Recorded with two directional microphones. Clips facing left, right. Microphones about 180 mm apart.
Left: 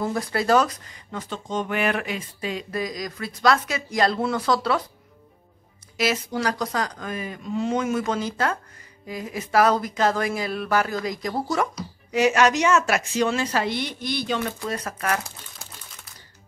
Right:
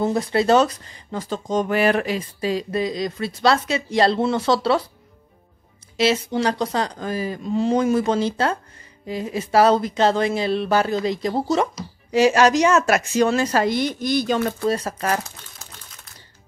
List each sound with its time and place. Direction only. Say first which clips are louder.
0.0 s speech: right 5 dB; 25° right (ahead or behind)
5.9 s a woman's voice: right 5 dB; 25° right (ahead or behind); by 14.8 s 45° right (ahead or behind)
14.8 s speech: right 3 dB; 30° right (ahead or behind)